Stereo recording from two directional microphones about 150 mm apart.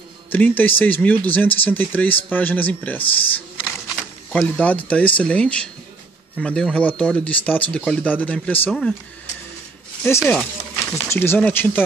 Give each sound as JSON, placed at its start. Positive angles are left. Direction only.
{"t": 0.3, "sound": "speech", "side_deg": 10}
{"t": 10.0, "sound": "speech", "side_deg": 15}